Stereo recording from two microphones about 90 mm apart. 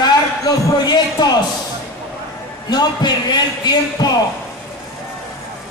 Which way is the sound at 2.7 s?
50° left (ahead or behind).